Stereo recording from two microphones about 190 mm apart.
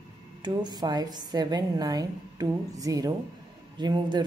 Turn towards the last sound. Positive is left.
turn(degrees=-25)  # may be behind; listen again after turning